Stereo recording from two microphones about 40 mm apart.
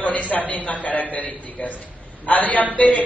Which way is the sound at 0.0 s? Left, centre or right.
Left.